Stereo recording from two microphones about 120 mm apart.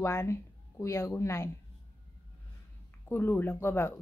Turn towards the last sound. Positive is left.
turn(degrees=20)  # may be behind; listen again after turning